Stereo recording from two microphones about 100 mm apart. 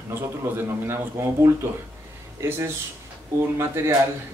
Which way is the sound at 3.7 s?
30° right (ahead or behind).